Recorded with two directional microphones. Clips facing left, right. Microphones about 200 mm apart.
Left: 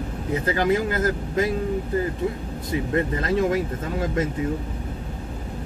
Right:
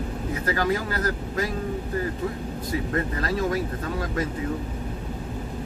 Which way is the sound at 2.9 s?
25° left (ahead or behind).